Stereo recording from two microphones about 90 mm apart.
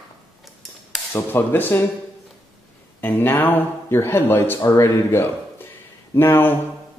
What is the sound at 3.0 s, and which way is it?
Speech, 25° left (ahead or behind).